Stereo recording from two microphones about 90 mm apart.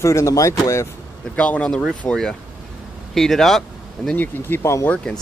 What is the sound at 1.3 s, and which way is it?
Speech, 15° left (ahead or behind).